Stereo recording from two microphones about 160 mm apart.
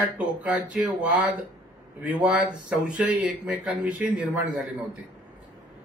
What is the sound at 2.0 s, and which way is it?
Speech, 10° right (ahead or behind).